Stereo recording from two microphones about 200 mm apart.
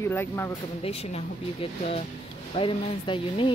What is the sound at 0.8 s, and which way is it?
Speech, 30° left (ahead or behind).